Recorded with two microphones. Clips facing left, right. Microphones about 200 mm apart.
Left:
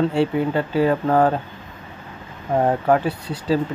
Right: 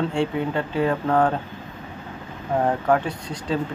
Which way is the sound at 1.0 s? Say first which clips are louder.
Left 1 dB; 20° left (ahead or behind).